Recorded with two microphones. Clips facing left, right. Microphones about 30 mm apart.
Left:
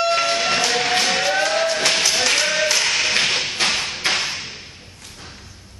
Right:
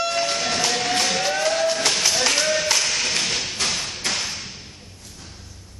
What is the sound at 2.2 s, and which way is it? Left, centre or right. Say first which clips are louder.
Clapping: left 2 dB; left.